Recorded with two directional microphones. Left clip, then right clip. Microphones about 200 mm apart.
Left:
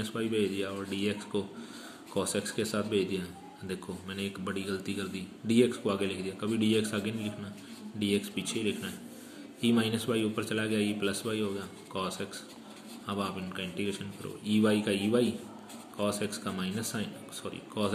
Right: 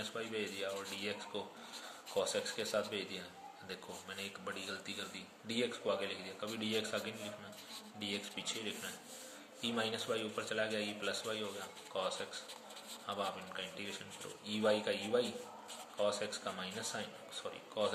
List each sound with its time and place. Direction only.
0.0 s a man's voice: 25° left (ahead or behind)